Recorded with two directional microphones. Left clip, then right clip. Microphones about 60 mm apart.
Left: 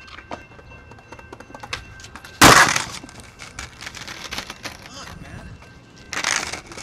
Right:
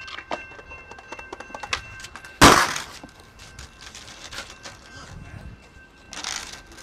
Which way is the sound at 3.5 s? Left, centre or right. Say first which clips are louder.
Left 8 dB; left.